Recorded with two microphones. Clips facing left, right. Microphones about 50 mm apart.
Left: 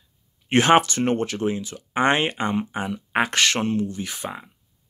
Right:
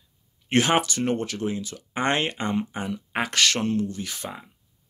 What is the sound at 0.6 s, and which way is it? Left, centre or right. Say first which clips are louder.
Speech: left 5 dB; left.